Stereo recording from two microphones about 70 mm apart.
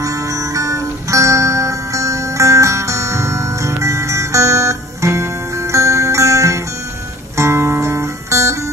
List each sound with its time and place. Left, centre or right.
0.0 s guitar: right